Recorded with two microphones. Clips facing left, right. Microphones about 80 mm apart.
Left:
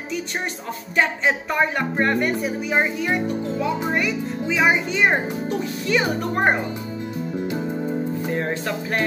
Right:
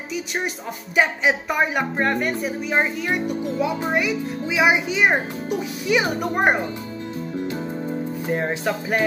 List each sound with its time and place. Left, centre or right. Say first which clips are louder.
0.9 s a child's voice: right 1 dB; centre
7.3 s music: left 2 dB; centre
8.3 s a child's voice: right 1 dB; centre